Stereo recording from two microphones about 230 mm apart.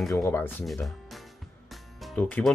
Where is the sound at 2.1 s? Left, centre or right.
Centre.